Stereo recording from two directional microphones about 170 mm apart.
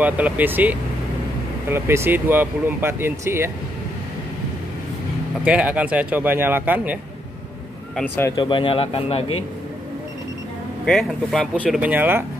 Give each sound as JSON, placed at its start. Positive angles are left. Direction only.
{"t": 0.0, "sound": "speech", "side_deg": -10}
{"t": 5.4, "sound": "speech", "side_deg": -5}
{"t": 7.9, "sound": "speech", "side_deg": 10}
{"t": 8.4, "sound": "speech", "side_deg": 30}
{"t": 10.9, "sound": "speech", "side_deg": 0}
{"t": 11.6, "sound": "speech", "side_deg": -10}